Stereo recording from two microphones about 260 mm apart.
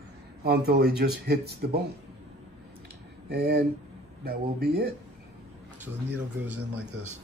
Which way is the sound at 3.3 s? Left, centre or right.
Right.